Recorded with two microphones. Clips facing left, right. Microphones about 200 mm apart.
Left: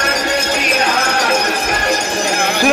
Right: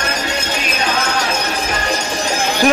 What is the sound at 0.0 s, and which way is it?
Music, 65° left (ahead or behind).